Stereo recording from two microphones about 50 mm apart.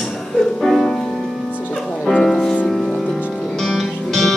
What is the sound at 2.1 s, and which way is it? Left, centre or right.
Music, centre.